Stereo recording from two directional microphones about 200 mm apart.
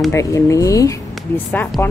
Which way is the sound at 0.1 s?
15° left (ahead or behind).